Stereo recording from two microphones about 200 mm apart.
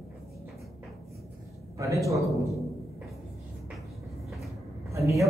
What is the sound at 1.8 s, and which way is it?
Speech, 15° right (ahead or behind).